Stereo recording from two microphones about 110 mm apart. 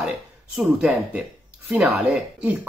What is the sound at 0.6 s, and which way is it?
Speech, 15° right (ahead or behind).